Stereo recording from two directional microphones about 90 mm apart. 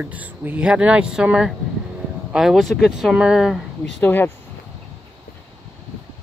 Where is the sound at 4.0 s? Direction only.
20° left (ahead or behind).